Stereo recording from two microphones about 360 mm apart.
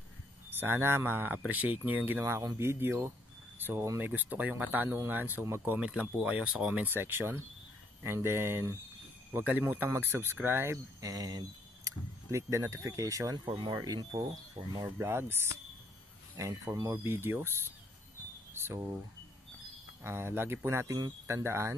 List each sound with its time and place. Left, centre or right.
0.6 s speech: centre
16.3 s speech: centre
18.5 s speech: centre
20.0 s speech: centre